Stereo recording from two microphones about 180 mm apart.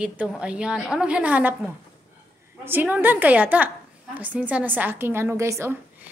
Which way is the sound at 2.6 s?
10° right (ahead or behind).